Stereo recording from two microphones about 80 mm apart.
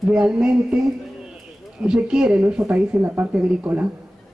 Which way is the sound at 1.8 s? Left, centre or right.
Centre.